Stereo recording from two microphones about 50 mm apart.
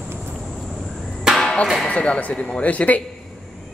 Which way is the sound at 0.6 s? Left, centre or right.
Centre.